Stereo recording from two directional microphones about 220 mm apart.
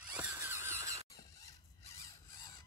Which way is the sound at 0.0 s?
5° right (ahead or behind).